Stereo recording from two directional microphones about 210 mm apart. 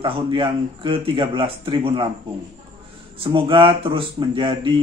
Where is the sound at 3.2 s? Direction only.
25° right (ahead or behind).